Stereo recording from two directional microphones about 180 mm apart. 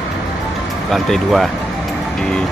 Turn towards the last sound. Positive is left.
turn(degrees=0)  # may be behind; listen again after turning